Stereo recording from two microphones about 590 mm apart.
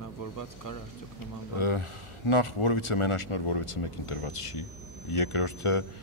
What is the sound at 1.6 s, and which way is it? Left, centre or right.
Speech, left.